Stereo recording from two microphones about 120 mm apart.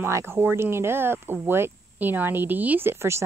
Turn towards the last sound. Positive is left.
turn(degrees=-20)  # may be behind; listen again after turning